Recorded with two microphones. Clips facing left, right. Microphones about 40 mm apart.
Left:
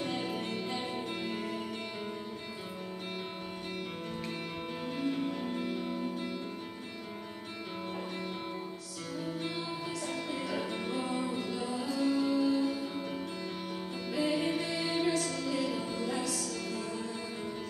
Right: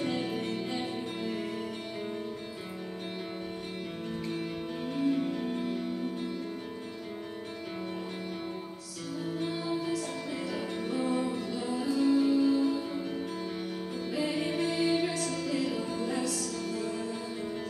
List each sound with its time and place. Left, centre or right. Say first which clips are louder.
0.0 s music: right 3 dB; centre
5.2 s music: right 2 dB; centre
10.3 s music: right 1 dB; centre
10.8 s music: right 3 dB; left
11.2 s music: right 2 dB; centre
15.7 s music: right 2 dB; centre